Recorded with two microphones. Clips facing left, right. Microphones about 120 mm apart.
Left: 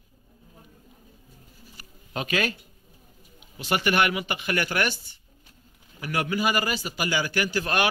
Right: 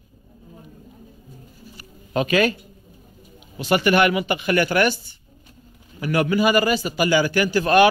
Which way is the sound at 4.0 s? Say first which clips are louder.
Right 6 dB; 90° right.